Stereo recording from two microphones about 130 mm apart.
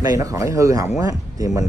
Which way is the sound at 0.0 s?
25° right (ahead or behind).